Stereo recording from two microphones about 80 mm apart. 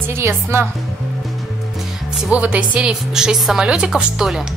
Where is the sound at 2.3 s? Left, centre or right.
Centre.